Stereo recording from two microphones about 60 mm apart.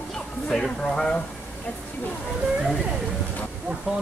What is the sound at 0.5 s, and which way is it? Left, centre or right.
Speech, centre.